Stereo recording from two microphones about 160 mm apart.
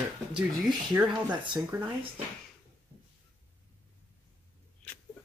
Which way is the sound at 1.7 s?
20° right (ahead or behind).